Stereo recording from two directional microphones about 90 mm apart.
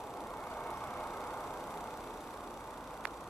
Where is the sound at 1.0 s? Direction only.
Centre (ahead or behind).